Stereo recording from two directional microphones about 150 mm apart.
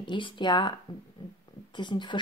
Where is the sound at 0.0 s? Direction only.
30° left (ahead or behind).